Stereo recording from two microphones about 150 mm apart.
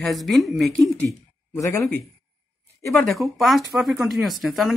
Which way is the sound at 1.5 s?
20° left (ahead or behind).